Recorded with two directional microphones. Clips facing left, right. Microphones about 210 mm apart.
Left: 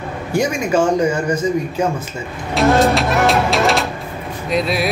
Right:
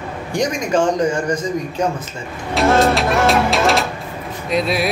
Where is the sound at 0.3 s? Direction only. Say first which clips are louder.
Left 2 dB; 5° left (ahead or behind).